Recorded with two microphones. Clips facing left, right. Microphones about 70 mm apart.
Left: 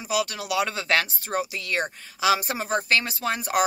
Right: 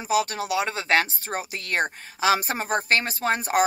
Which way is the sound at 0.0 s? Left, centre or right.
Right.